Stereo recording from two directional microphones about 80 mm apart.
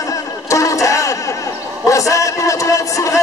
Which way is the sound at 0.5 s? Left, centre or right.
Left.